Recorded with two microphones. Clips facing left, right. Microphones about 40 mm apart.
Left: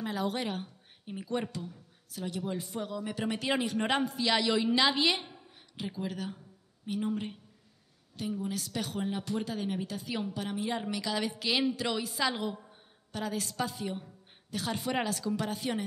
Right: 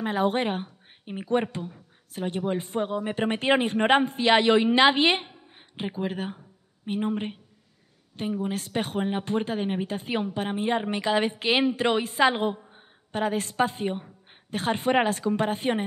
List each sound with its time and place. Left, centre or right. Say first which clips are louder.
0.0 s speech: right 8 dB; right